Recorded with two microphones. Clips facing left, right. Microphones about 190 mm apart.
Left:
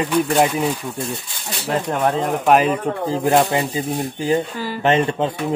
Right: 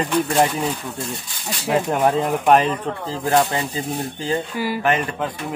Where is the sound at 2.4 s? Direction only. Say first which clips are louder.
Left 2 dB; 5° left (ahead or behind).